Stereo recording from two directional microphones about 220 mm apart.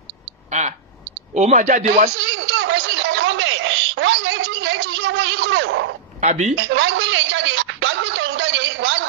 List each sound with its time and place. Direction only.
0.5 s speech: 30° right (ahead or behind)
2.4 s a sound: 60° right (ahead or behind)
6.2 s speech: 30° right (ahead or behind)
6.7 s music: 60° right (ahead or behind)